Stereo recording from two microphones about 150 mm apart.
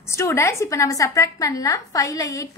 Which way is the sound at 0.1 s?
20° left (ahead or behind).